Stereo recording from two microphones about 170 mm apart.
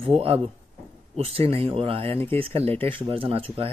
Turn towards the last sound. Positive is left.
turn(degrees=-35)  # may be behind; listen again after turning